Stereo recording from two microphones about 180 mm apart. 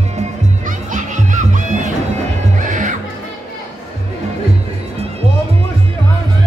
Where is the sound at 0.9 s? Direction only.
45° right (ahead or behind).